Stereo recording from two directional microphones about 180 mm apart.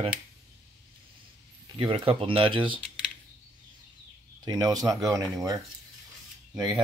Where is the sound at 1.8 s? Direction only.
30° right (ahead or behind).